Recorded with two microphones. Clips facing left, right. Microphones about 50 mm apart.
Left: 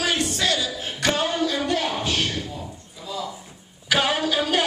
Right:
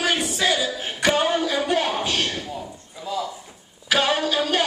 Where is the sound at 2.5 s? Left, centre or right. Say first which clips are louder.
Right 2 dB; right.